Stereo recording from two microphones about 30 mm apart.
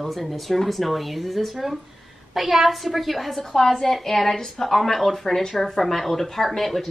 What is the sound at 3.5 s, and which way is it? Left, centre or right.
A woman's voice, centre.